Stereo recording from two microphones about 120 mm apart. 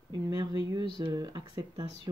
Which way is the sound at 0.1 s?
35° right (ahead or behind).